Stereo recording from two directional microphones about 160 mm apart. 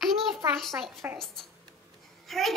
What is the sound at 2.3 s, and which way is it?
Speech, centre (ahead or behind).